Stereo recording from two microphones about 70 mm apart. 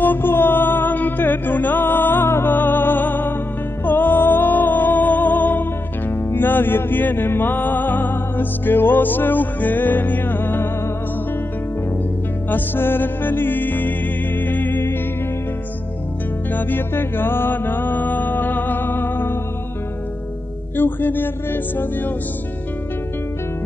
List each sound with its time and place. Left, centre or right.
0.0 s music: left
12.4 s music: left
16.5 s music: left
20.7 s speech: left